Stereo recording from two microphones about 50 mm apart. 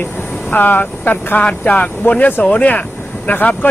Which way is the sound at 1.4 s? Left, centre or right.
Left.